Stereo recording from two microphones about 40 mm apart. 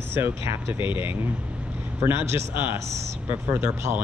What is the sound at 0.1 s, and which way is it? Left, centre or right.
Speech, right.